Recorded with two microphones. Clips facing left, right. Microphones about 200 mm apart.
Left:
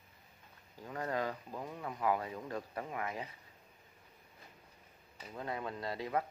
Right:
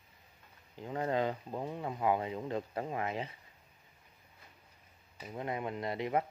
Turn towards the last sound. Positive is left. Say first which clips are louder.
# right 3 dB
turn(degrees=-20)  # may be behind; listen again after turning